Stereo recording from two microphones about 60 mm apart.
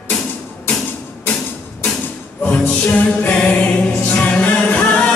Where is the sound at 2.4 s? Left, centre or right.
Centre.